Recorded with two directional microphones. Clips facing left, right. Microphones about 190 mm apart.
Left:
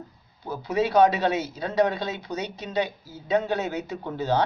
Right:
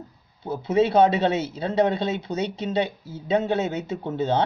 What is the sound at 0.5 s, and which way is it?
Speech, 25° right (ahead or behind).